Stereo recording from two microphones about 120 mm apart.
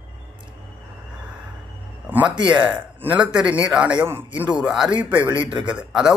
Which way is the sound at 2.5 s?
15° right (ahead or behind).